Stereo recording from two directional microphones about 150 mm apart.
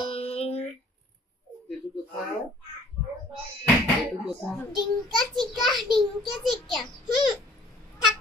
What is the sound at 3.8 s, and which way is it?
A child's voice, centre (ahead or behind).